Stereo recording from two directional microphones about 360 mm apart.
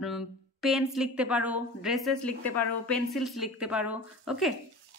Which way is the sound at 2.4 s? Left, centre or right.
Left.